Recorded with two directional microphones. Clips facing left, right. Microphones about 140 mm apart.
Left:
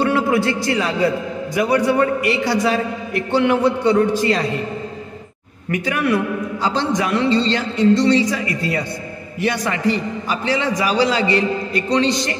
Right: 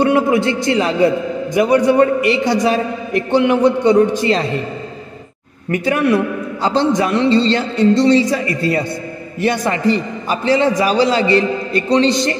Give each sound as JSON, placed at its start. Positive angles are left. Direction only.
{"t": 0.0, "sound": "a man's voice", "side_deg": -20}
{"t": 5.7, "sound": "a man's voice", "side_deg": -30}